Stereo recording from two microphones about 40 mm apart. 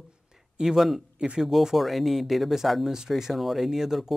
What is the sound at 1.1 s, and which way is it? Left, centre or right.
Speech, right.